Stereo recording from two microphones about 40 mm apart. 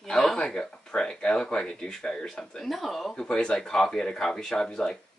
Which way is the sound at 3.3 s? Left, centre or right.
Left.